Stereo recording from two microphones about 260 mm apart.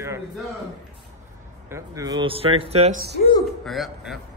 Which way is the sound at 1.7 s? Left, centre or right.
Centre.